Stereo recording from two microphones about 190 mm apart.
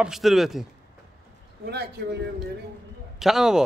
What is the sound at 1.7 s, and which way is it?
Speech, 60° right (ahead or behind).